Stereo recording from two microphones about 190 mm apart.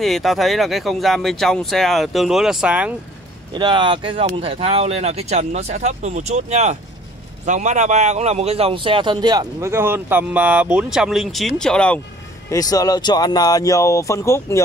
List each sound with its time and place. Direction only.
0.0 s speech: centre (ahead or behind)
3.5 s a man's voice: 25° right (ahead or behind); by 12.0 s 5° left (ahead or behind)
12.4 s speech: 20° left (ahead or behind)